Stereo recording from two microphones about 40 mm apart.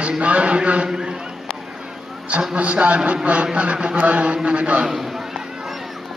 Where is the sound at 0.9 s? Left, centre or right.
Centre.